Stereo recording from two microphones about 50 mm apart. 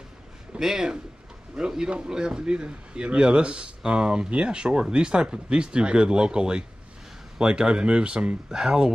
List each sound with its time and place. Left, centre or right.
0.6 s speech: centre